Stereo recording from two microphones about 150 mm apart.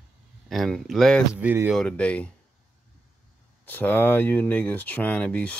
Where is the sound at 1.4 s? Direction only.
15° right (ahead or behind).